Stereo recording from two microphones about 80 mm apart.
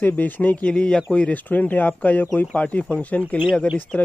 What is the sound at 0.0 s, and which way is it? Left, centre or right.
Speech, left.